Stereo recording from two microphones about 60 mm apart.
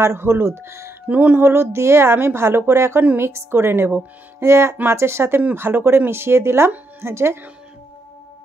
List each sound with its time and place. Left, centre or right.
0.0 s a woman's voice: right
1.0 s speech: right
1.4 s a woman's voice: right